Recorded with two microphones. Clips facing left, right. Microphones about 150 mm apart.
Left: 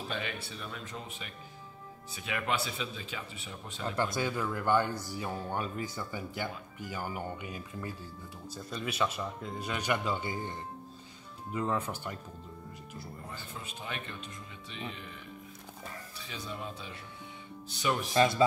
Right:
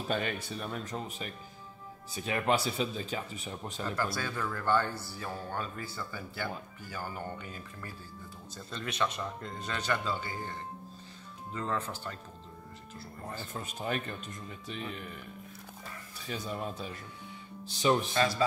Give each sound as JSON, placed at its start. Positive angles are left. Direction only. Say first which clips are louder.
{"t": 0.1, "sound": "speech", "louder": "right 8 dB", "side_deg": -45}
{"t": 3.8, "sound": "speech", "louder": "left 3 dB", "side_deg": 20}
{"t": 13.3, "sound": "speech", "louder": "right 4 dB", "side_deg": -45}
{"t": 16.2, "sound": "speech", "louder": "right 5 dB", "side_deg": -45}
{"t": 18.1, "sound": "speech", "louder": "left 3 dB", "side_deg": 25}